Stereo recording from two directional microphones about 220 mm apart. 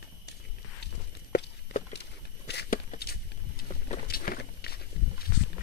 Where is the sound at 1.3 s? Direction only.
45° left (ahead or behind).